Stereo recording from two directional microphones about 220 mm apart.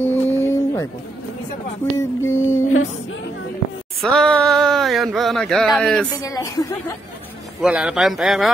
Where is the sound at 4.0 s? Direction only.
Centre (ahead or behind).